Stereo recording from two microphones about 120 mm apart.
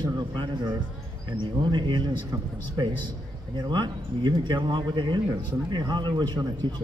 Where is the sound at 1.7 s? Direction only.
40° right (ahead or behind).